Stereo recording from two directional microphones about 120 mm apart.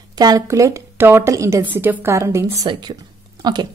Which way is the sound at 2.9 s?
35° right (ahead or behind).